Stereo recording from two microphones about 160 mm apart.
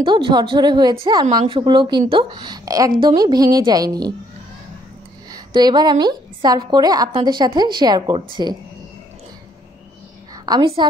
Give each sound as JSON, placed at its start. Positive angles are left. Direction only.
{"t": 0.0, "sound": "a woman's voice", "side_deg": -30}
{"t": 5.3, "sound": "a woman's voice", "side_deg": -25}
{"t": 10.3, "sound": "a woman's voice", "side_deg": -25}